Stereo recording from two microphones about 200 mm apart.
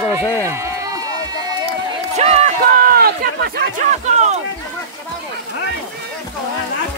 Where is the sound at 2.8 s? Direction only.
50° right (ahead or behind).